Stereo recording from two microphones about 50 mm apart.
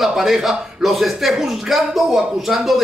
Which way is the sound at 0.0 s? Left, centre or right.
Centre.